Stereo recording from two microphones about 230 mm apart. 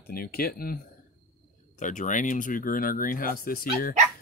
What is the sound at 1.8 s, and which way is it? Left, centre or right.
Speech, left.